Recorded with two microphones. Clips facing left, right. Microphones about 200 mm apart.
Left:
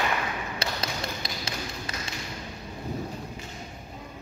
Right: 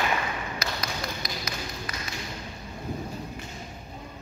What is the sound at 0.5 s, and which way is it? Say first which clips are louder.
Tap: left 1 dB; 30° left (ahead or behind).